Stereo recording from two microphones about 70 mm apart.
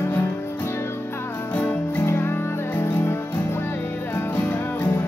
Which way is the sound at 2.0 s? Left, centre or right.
Left.